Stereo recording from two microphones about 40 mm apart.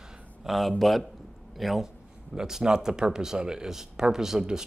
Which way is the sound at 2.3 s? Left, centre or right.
Centre.